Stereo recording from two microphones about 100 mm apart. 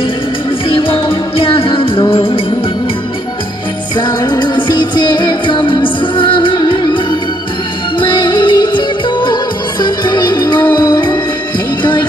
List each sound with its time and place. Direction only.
0.7 s music: 60° left (ahead or behind)
3.9 s music: 45° left (ahead or behind)